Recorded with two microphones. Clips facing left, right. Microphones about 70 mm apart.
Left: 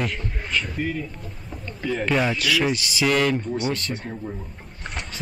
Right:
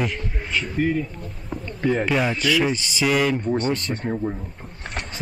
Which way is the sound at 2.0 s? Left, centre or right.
Centre.